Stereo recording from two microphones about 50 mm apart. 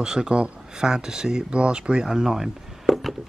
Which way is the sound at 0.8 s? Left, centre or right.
Centre.